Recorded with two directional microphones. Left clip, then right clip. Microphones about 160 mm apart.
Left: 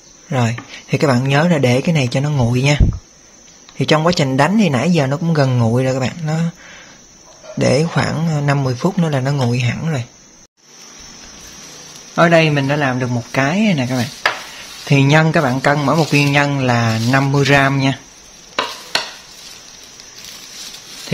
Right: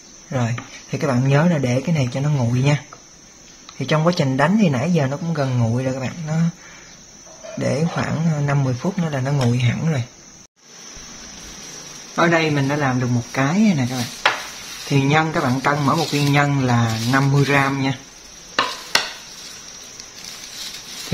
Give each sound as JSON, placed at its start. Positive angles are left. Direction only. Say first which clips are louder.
{"t": 0.3, "sound": "speech", "louder": "left 5 dB", "side_deg": 45}
{"t": 5.8, "sound": "speech", "louder": "left 7 dB", "side_deg": 50}
{"t": 7.5, "sound": "speech", "louder": "left 7 dB", "side_deg": 50}
{"t": 12.2, "sound": "speech", "louder": "left 5 dB", "side_deg": 75}
{"t": 14.9, "sound": "speech", "louder": "left 5 dB", "side_deg": 75}